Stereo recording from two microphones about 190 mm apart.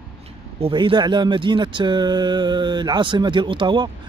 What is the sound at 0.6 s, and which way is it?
Speech, 30° right (ahead or behind).